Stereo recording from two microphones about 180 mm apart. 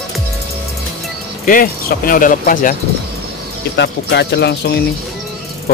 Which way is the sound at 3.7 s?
70° left (ahead or behind).